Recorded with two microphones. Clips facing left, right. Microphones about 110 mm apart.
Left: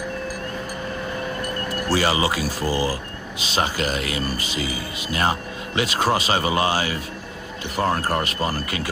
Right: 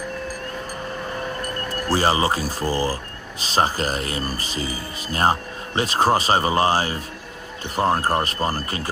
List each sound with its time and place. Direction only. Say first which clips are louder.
1.9 s speech: right 2 dB; 40° right (ahead or behind)